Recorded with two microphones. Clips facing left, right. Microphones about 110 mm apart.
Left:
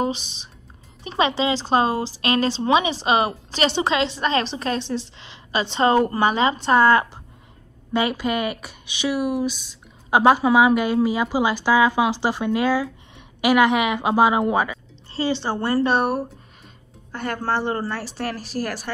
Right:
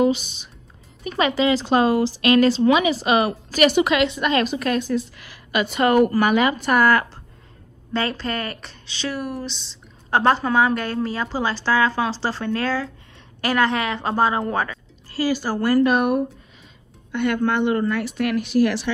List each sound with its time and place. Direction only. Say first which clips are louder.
0.0 s a woman's voice: right 5 dB; 35° left (ahead or behind); by 14.8 s 10° left (ahead or behind)
15.0 s a woman's voice: right 1 dB; 25° left (ahead or behind); by 18.9 s 40° left (ahead or behind)